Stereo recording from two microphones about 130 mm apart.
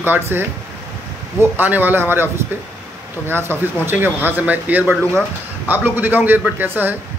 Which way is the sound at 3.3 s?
15° right (ahead or behind).